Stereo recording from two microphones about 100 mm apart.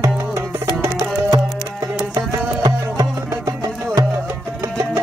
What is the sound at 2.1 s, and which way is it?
Music, 35° right (ahead or behind).